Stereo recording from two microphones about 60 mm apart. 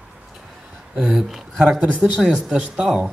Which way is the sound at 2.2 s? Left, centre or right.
Centre.